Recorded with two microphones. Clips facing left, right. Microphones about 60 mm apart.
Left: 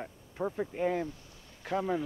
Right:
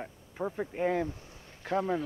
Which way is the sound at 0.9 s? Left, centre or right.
Right.